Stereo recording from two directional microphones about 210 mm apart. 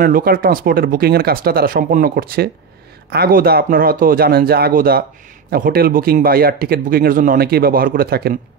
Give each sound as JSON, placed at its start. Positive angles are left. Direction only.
{"t": 0.0, "sound": "speech", "side_deg": -45}